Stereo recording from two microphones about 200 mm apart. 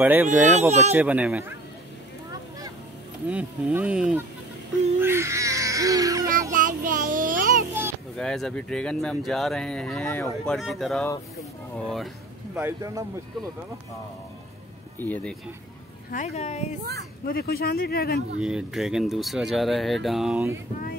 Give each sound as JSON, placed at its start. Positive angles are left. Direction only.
{"t": 0.0, "sound": "speech", "side_deg": -10}
{"t": 0.5, "sound": "speech", "side_deg": -35}
{"t": 0.9, "sound": "speech", "side_deg": -5}
{"t": 3.3, "sound": "speech", "side_deg": -5}
{"t": 6.5, "sound": "child singing", "side_deg": -40}
{"t": 8.2, "sound": "speech", "side_deg": 5}
{"t": 12.5, "sound": "speech", "side_deg": -15}
{"t": 15.0, "sound": "speech", "side_deg": 10}
{"t": 16.1, "sound": "speech", "side_deg": 35}
{"t": 17.3, "sound": "speech", "side_deg": 50}
{"t": 18.4, "sound": "speech", "side_deg": -5}